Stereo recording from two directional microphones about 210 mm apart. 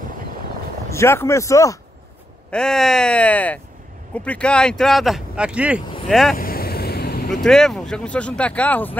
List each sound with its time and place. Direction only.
0.8 s speech: 15° left (ahead or behind)
2.5 s speech: centre (ahead or behind)
6.3 s vehicle: 45° left (ahead or behind)
7.4 s speech: centre (ahead or behind)